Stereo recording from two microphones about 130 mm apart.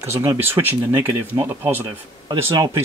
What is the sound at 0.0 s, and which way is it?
Speech, 20° right (ahead or behind).